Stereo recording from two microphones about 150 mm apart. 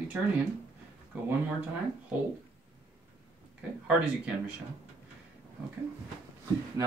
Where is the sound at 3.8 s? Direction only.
10° right (ahead or behind).